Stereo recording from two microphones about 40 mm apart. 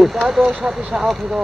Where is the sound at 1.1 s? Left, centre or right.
Centre.